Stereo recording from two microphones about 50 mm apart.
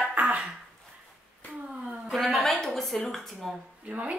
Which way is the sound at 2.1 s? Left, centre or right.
Centre.